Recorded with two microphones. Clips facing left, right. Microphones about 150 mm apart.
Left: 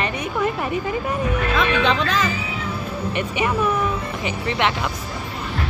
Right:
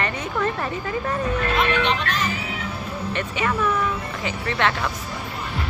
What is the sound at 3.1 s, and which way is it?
A woman's voice, 15° left (ahead or behind).